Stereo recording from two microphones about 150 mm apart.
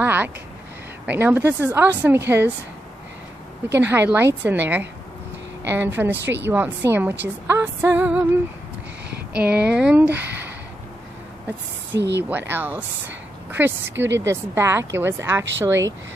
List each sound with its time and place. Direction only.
0.0 s a sound: 10° right (ahead or behind)
1.0 s a woman's voice: 10° right (ahead or behind)
3.6 s a woman's voice: 15° right (ahead or behind)
9.3 s a woman's voice: 10° right (ahead or behind)
12.2 s a woman's voice: 15° right (ahead or behind)